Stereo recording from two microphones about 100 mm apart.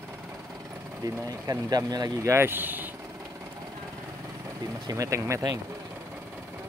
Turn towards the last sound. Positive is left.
turn(degrees=-35)  # may be behind; listen again after turning